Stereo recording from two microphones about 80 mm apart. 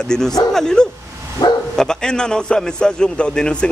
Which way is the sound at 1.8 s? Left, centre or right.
Centre.